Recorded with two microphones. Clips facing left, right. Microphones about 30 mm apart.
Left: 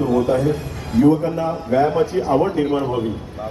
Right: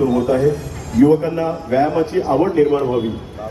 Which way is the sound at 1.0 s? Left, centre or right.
Right.